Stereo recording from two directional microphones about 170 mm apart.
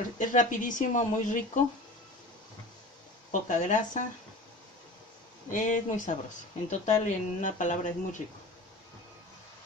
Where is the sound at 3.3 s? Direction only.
50° left (ahead or behind).